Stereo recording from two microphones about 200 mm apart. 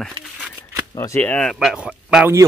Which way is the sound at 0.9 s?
15° left (ahead or behind).